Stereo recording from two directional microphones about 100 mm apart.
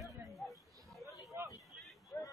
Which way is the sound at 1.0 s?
35° left (ahead or behind).